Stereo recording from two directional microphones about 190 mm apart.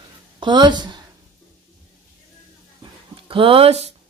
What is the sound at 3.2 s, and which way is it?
Speech, 30° right (ahead or behind).